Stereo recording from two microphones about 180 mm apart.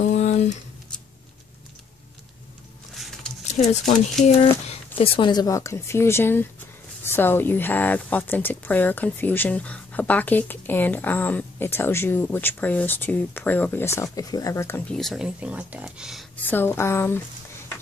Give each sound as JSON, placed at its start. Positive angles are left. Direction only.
{"t": 0.0, "sound": "a sound", "side_deg": 40}
{"t": 2.9, "sound": "wild animals", "side_deg": 0}
{"t": 3.5, "sound": "speech", "side_deg": 40}
{"t": 4.9, "sound": "speech", "side_deg": 30}
{"t": 15.0, "sound": "speech", "side_deg": 0}
{"t": 16.4, "sound": "speech", "side_deg": 10}